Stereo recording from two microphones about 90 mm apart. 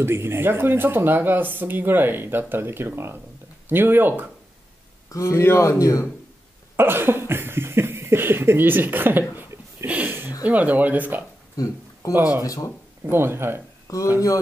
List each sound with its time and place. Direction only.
0.0 s speech: 25° right (ahead or behind)
5.1 s speech: 30° left (ahead or behind)
6.8 s speech: 25° right (ahead or behind)
9.4 s a sound: 30° right (ahead or behind)
9.8 s a sound: 15° right (ahead or behind)
10.4 s speech: 15° right (ahead or behind)
11.5 s a sound: 40° left (ahead or behind)
12.1 s speech: 20° right (ahead or behind)
12.4 s speech: 40° left (ahead or behind)
13.1 s speech: 25° right (ahead or behind)
13.9 s speech: 35° left (ahead or behind)